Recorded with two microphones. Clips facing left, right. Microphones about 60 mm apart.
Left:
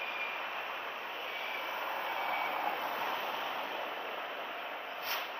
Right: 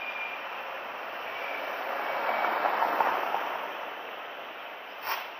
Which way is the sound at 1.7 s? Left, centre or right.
Right.